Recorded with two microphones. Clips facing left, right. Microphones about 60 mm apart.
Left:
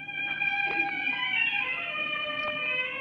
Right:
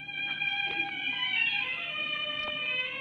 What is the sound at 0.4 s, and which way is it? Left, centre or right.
Music, left.